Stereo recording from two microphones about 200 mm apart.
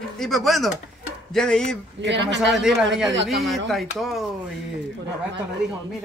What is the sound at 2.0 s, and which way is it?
Speech, 60° right (ahead or behind).